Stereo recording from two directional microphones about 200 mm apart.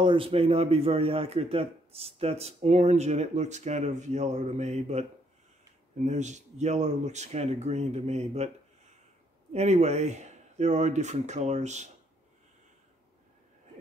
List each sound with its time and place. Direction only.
0.0 s speech: 25° right (ahead or behind)
6.0 s speech: 35° right (ahead or behind)
9.5 s speech: 35° right (ahead or behind)